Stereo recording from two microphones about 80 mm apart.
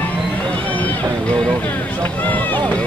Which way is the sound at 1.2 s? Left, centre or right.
Centre.